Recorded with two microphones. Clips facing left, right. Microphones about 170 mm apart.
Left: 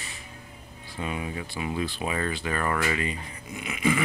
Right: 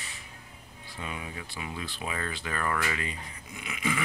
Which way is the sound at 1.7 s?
60° left (ahead or behind).